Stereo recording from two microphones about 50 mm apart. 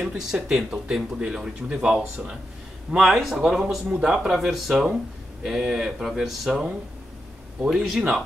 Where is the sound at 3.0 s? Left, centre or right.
Centre.